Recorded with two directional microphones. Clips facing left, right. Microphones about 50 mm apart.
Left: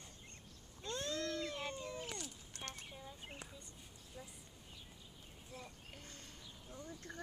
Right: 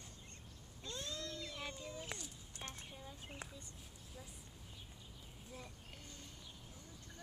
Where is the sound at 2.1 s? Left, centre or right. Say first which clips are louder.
Left 3 dB; left.